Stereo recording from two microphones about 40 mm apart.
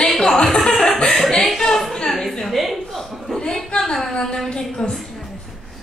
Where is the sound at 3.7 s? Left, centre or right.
Centre.